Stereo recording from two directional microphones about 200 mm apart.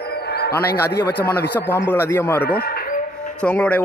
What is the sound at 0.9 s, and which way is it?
Speech, 55° left (ahead or behind).